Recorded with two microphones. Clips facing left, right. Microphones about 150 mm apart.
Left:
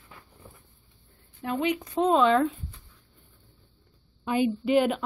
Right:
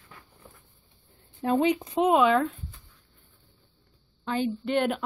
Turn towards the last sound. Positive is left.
turn(degrees=0)  # may be behind; listen again after turning